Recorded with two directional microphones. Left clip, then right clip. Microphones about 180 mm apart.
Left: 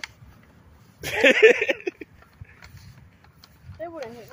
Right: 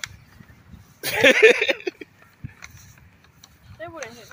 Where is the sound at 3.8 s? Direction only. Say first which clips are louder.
Left 1 dB; 20° left (ahead or behind).